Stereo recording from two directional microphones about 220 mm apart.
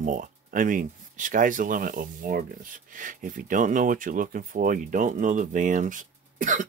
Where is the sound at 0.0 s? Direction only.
35° right (ahead or behind).